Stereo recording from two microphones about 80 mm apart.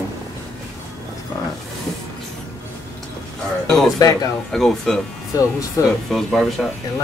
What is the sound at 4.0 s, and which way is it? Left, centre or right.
Speech, left.